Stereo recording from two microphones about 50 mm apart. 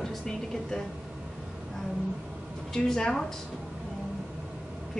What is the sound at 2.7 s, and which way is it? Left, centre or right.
Speech, centre.